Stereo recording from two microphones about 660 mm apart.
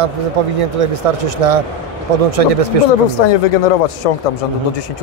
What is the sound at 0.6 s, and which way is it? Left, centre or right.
Speech, right.